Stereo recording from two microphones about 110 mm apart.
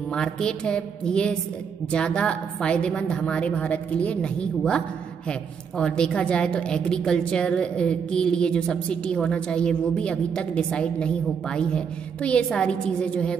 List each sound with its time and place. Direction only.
0.1 s a woman's voice: 5° left (ahead or behind)